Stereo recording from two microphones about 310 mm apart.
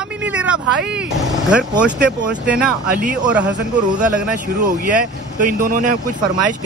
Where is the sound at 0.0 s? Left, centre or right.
Centre.